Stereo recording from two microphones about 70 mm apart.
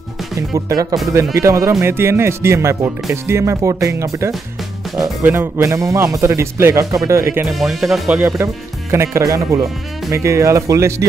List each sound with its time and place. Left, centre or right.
0.7 s speech: right
1.3 s speech: right
5.2 s speech: right
7.4 s speech: centre
8.4 s speech: right
9.2 s speech: right
10.1 s speech: right